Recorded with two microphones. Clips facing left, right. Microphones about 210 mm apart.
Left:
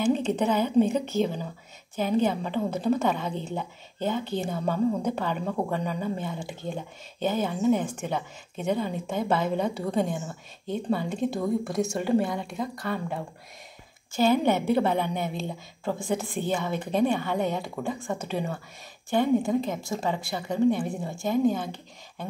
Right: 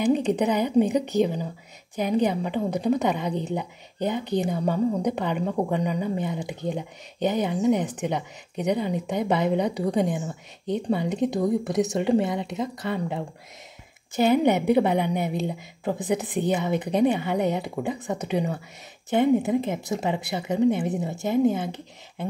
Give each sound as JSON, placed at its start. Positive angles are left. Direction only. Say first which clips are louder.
{"t": 0.0, "sound": "a woman's voice", "louder": "right 2 dB", "side_deg": -15}